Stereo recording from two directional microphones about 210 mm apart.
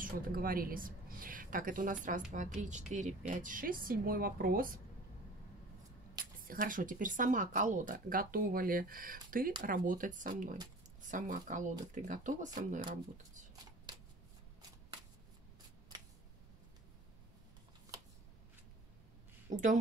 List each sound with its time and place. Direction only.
0.0 s a woman's voice: 45° right (ahead or behind)
6.4 s speech: 40° right (ahead or behind)
19.5 s a woman's voice: 35° right (ahead or behind)